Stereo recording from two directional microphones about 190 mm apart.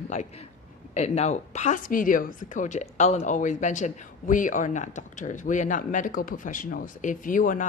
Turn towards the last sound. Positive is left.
turn(degrees=45)  # may be behind; listen again after turning